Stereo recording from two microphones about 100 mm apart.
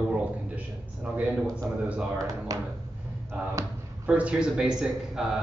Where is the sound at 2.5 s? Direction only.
35° right (ahead or behind).